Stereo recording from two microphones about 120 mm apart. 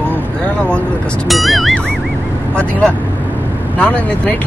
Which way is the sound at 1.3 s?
Centre (ahead or behind).